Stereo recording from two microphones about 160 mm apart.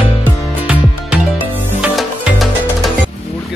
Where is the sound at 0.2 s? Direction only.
5° right (ahead or behind).